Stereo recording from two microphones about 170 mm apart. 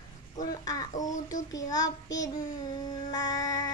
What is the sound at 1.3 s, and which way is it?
Child singing, 20° left (ahead or behind).